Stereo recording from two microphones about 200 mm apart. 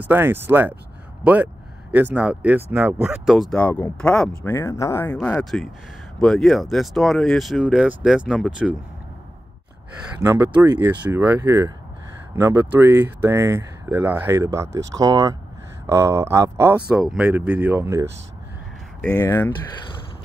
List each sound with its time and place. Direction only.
0.0 s speech: 10° right (ahead or behind)
1.2 s a sound: 5° right (ahead or behind)
2.1 s speech: 5° right (ahead or behind)
10.2 s speech: 10° right (ahead or behind)
16.9 s speech: 5° right (ahead or behind)
19.0 s speech: 15° left (ahead or behind)